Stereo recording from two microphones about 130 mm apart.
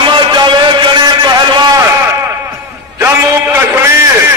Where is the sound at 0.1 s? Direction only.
35° right (ahead or behind).